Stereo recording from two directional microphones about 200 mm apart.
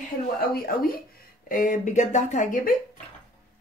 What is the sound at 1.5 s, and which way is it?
Speech, 40° left (ahead or behind).